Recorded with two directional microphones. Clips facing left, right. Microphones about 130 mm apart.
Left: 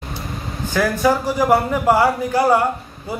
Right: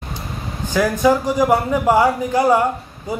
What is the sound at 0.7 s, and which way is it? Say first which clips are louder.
A woman's voice: right 2 dB; 15° right (ahead or behind).